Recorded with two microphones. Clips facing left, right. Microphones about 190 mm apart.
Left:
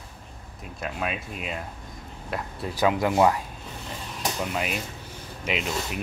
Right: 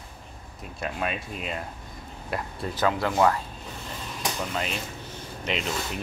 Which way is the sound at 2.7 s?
15° left (ahead or behind).